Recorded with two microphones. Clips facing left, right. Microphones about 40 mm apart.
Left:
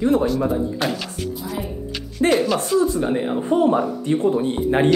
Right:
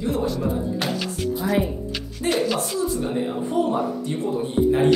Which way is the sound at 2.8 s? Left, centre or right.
Left.